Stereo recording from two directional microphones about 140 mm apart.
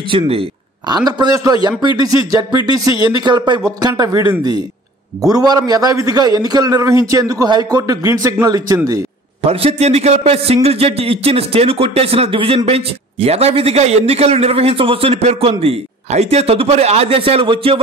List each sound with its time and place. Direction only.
0.1 s a man's voice: 40° right (ahead or behind)
5.3 s a man's voice: 30° right (ahead or behind)
9.4 s a man's voice: 45° right (ahead or behind)